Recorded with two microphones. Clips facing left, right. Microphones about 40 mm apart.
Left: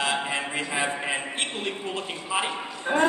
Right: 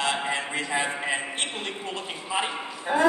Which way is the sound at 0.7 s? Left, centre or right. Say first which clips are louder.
Right 1 dB; centre.